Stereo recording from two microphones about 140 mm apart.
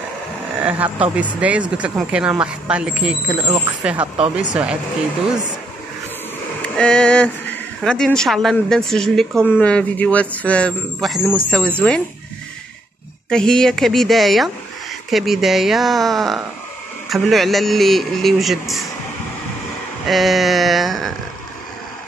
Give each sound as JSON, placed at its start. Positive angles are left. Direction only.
{"t": 0.7, "sound": "speech", "side_deg": -10}
{"t": 3.9, "sound": "speech", "side_deg": -40}
{"t": 4.4, "sound": "speech", "side_deg": -5}
{"t": 6.8, "sound": "speech", "side_deg": 5}
{"t": 13.3, "sound": "speech", "side_deg": 5}
{"t": 20.1, "sound": "speech", "side_deg": 0}